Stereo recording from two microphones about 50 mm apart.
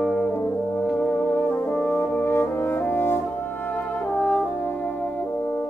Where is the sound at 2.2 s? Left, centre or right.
Left.